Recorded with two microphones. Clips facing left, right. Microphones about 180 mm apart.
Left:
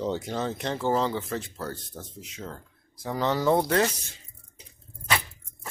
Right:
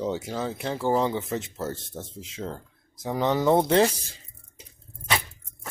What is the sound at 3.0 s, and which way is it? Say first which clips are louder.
Speech: right 2 dB; 15° right (ahead or behind).